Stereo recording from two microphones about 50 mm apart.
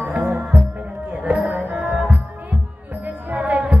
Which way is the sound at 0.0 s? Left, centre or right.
Right.